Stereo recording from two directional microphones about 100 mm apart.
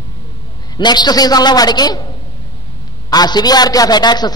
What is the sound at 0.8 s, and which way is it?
A man's voice, 45° left (ahead or behind).